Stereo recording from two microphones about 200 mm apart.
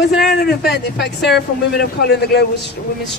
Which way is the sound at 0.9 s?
55° left (ahead or behind).